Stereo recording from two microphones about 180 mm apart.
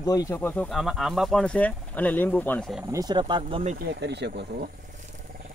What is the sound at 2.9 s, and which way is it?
Speech, 25° right (ahead or behind).